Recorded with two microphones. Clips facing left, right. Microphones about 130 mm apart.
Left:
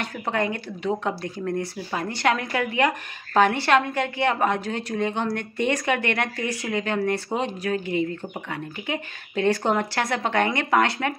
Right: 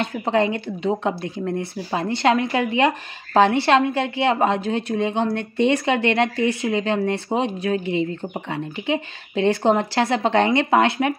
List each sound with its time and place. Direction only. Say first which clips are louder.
0.0 s speech: right 6 dB; 20° right (ahead or behind)